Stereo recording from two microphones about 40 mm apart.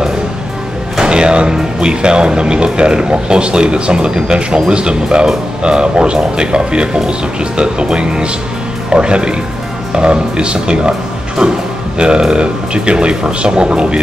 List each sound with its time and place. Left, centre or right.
0.9 s speech: right